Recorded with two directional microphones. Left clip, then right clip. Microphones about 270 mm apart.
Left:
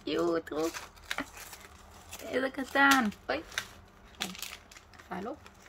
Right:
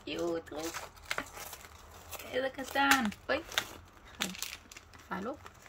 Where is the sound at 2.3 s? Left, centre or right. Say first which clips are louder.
Left 3 dB; centre.